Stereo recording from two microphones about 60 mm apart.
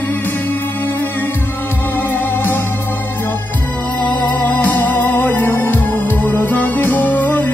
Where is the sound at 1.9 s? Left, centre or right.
Left.